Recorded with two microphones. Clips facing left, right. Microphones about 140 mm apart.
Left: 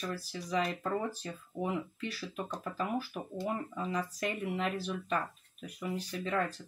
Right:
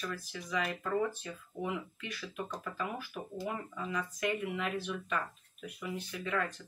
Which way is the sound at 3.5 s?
35° left (ahead or behind).